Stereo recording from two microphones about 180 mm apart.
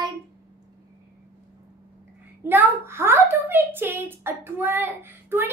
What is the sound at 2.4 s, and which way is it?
A child's voice, 10° right (ahead or behind).